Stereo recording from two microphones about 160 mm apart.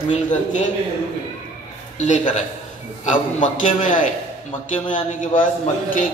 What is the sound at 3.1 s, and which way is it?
A man's voice, 50° left (ahead or behind).